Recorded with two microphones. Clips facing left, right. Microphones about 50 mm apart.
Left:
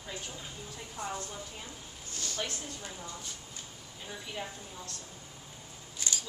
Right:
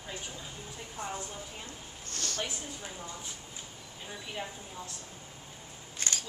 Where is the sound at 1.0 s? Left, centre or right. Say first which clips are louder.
Left 1 dB; right.